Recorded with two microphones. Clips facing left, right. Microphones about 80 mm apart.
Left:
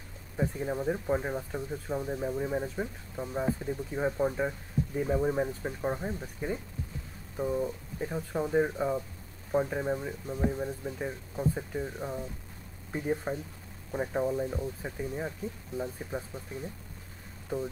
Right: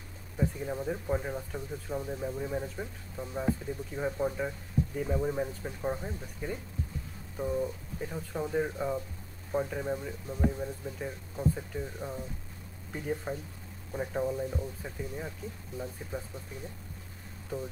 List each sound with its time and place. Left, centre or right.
0.4 s speech: centre
7.3 s speech: centre